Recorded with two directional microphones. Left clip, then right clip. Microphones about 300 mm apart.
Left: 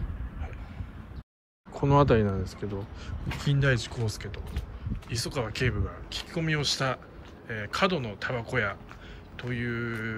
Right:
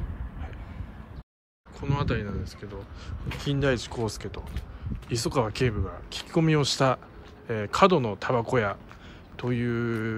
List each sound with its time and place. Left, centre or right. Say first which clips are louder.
1.7 s speech: left 8 dB; centre